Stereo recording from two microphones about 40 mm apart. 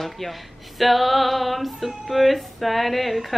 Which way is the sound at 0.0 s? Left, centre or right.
Centre.